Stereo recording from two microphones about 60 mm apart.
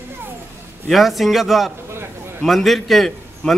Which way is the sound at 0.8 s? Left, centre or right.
Centre.